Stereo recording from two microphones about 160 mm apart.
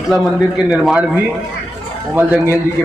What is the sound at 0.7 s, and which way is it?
Speech, 10° right (ahead or behind).